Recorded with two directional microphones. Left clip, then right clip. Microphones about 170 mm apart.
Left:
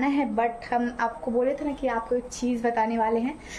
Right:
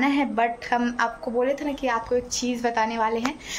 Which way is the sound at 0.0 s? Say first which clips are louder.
Right 2 dB; centre (ahead or behind).